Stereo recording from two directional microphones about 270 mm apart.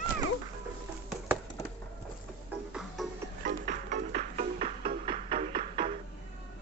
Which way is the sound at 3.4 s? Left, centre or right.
Right.